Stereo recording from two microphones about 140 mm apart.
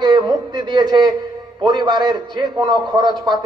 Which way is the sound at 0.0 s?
30° right (ahead or behind).